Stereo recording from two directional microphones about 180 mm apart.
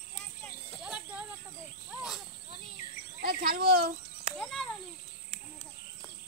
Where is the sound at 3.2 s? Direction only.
60° right (ahead or behind).